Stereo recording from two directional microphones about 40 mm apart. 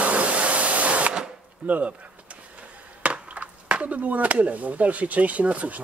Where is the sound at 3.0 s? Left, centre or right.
Right.